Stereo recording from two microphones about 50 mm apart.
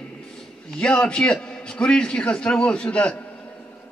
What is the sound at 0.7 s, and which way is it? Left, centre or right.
A man's voice, centre.